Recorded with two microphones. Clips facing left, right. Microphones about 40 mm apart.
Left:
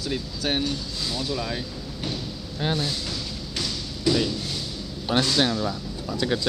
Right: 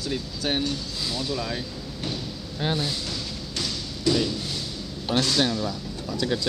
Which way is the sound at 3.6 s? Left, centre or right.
Centre.